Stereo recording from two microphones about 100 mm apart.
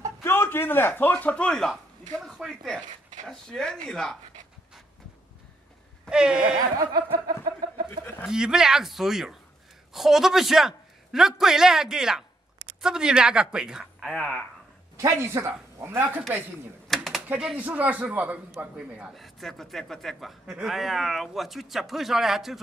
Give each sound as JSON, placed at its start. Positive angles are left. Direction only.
{"t": 0.2, "sound": "a man's voice", "side_deg": 25}
{"t": 6.0, "sound": "speech", "side_deg": -10}
{"t": 6.8, "sound": "snicker", "side_deg": -40}
{"t": 8.0, "sound": "speech", "side_deg": 20}
{"t": 8.3, "sound": "speech", "side_deg": -5}
{"t": 15.0, "sound": "speech", "side_deg": -25}
{"t": 16.8, "sound": "a sound", "side_deg": 0}
{"t": 17.3, "sound": "speech", "side_deg": -10}